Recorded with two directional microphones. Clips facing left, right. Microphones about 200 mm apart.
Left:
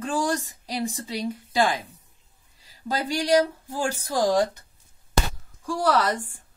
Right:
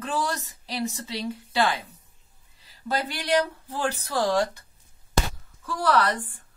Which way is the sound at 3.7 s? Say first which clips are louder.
Even; 10° left (ahead or behind).